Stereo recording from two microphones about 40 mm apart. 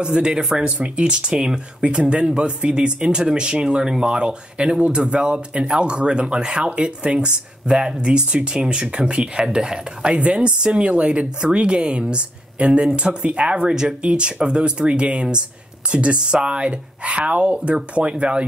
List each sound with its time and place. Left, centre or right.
0.0 s speech: right
0.7 s speech: right